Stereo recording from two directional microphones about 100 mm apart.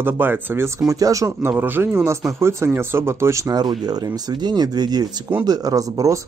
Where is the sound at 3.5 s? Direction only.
45° right (ahead or behind).